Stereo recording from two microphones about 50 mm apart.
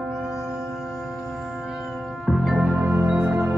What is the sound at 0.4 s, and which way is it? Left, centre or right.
Music, centre.